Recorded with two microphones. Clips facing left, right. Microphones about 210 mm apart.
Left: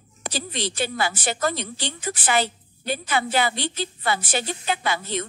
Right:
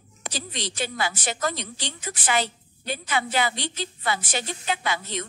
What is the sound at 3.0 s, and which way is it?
Speech, 35° left (ahead or behind).